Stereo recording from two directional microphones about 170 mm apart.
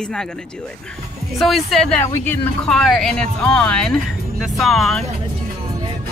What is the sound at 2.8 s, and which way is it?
Speech, centre (ahead or behind).